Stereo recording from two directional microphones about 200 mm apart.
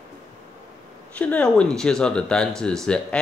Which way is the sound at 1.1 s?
5° left (ahead or behind).